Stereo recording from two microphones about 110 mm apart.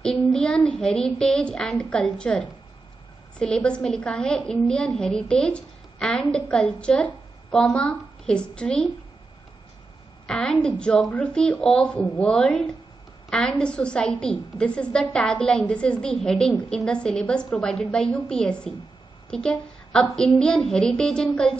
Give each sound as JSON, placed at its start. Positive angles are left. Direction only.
{"t": 0.0, "sound": "a child's voice", "side_deg": 5}
{"t": 10.2, "sound": "a woman's voice", "side_deg": 5}